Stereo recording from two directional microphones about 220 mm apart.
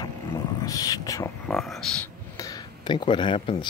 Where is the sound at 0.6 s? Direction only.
15° left (ahead or behind).